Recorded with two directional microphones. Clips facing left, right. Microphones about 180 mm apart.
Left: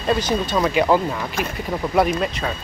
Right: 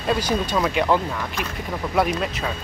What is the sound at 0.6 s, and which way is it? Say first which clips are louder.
Speech: left 5 dB; centre (ahead or behind).